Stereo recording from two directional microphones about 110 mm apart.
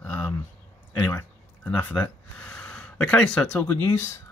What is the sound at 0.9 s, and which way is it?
Speech, 20° left (ahead or behind).